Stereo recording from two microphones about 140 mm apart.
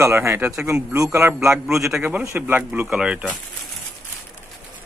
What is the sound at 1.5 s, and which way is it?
A man's voice, 5° right (ahead or behind).